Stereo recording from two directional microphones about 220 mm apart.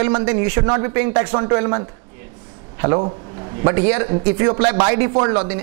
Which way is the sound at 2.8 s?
25° right (ahead or behind).